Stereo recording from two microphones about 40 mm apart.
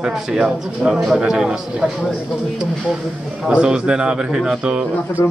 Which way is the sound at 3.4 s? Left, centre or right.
Right.